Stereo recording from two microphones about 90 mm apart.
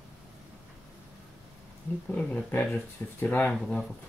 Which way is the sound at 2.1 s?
15° left (ahead or behind).